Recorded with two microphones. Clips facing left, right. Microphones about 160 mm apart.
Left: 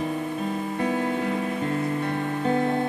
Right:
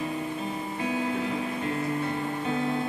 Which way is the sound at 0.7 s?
50° left (ahead or behind).